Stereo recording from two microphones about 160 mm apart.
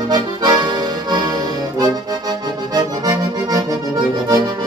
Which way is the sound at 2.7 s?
20° right (ahead or behind).